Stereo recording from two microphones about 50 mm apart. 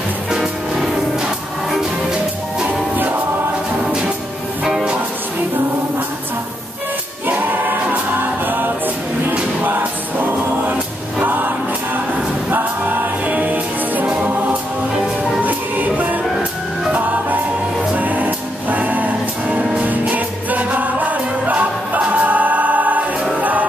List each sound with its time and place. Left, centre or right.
0.3 s music: centre
2.6 s music: right
4.6 s music: centre
7.2 s choir: right
9.6 s music: right
11.1 s choir: right
12.4 s music: right
15.4 s music: right